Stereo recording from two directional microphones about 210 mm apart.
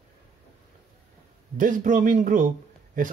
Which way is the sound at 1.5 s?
40° right (ahead or behind).